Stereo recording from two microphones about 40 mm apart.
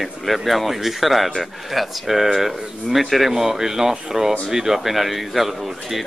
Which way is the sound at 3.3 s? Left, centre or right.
Centre.